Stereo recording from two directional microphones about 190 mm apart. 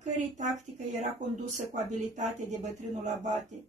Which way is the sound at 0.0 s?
40° right (ahead or behind).